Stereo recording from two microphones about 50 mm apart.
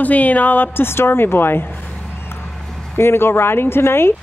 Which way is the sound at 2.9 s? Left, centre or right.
Left.